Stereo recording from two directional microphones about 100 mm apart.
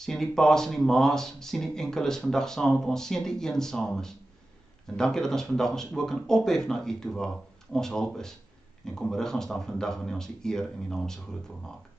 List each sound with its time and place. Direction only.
0.0 s speech: 5° left (ahead or behind)